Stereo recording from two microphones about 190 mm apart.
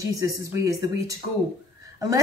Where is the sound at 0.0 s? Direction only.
20° right (ahead or behind).